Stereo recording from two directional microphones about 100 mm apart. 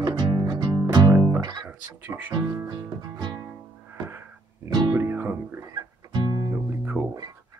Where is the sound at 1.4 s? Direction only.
45° right (ahead or behind).